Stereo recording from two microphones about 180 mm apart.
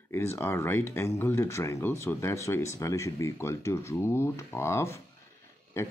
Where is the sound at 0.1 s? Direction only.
15° left (ahead or behind).